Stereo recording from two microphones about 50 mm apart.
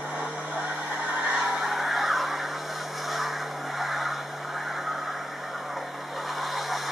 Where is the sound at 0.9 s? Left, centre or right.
Centre.